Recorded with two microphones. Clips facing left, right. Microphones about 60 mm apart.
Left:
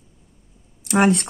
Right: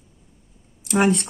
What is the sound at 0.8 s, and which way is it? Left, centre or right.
Speech, left.